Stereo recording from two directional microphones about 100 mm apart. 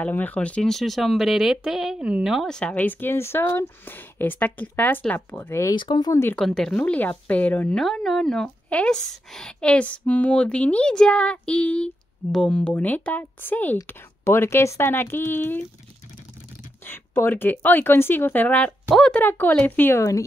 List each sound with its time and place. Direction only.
0.0 s speech: 15° left (ahead or behind); by 2.5 s 5° right (ahead or behind)
2.7 s speech: 20° left (ahead or behind)
5.8 s speech: 45° left (ahead or behind)
6.3 s a woman's voice: 5° left (ahead or behind)
7.7 s a woman's voice: 5° left (ahead or behind); by 15.6 s 20° left (ahead or behind)
16.8 s a woman's voice: 20° left (ahead or behind)
19.2 s speech: 20° left (ahead or behind)